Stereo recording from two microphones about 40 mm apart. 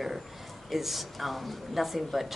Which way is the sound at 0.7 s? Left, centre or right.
Centre.